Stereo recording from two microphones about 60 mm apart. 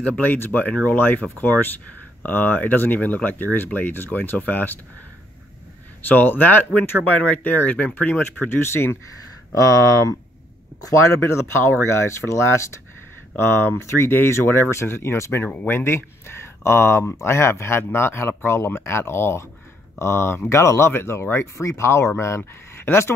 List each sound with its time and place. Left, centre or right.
0.2 s speech: left
6.0 s speech: left
8.5 s speech: left
9.5 s speech: left
11.0 s speech: left
15.4 s speech: left
15.8 s speech: left